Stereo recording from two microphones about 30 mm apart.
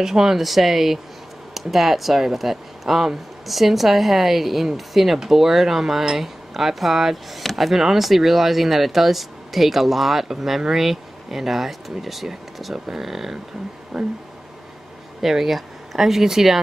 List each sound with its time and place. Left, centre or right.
0.0 s speech: centre
0.4 s speech: centre
7.7 s speech: centre
15.2 s speech: centre